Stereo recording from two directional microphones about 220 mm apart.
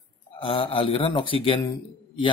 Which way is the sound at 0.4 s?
25° left (ahead or behind).